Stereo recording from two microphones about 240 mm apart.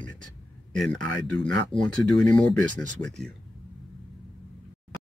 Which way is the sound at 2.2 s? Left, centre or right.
Centre.